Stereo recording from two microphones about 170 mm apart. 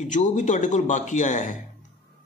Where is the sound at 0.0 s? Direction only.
45° left (ahead or behind).